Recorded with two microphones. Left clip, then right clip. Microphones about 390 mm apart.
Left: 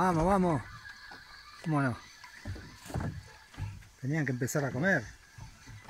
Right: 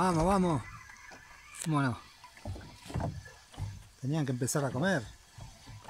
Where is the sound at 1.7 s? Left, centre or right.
Centre.